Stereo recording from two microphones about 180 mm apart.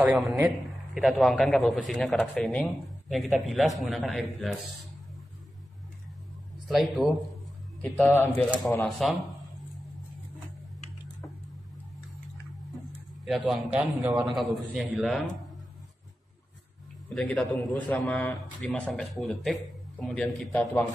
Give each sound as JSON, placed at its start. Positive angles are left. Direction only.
{"t": 0.0, "sound": "speech", "side_deg": 0}
{"t": 6.7, "sound": "a man's voice", "side_deg": 0}
{"t": 13.5, "sound": "a man's voice", "side_deg": -10}
{"t": 17.1, "sound": "speech", "side_deg": 5}